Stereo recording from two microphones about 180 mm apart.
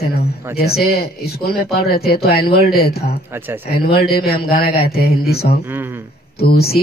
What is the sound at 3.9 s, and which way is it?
Speech, 60° left (ahead or behind).